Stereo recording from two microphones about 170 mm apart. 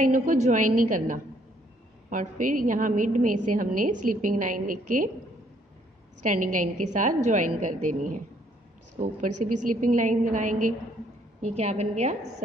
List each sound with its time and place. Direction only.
0.0 s a woman's voice: 50° right (ahead or behind)
6.2 s a woman's voice: 50° right (ahead or behind)
9.0 s a woman's voice: 50° right (ahead or behind)
11.5 s a woman's voice: 40° right (ahead or behind)